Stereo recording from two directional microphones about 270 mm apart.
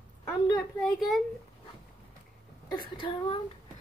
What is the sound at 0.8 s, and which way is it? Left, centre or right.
Speech, centre.